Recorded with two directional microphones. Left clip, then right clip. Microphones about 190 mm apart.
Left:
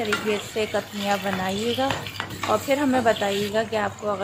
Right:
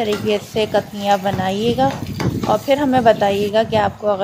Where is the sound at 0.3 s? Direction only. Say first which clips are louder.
Right 7 dB; 20° right (ahead or behind).